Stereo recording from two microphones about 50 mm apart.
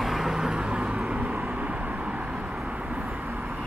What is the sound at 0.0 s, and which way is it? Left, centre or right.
Vehicle, centre.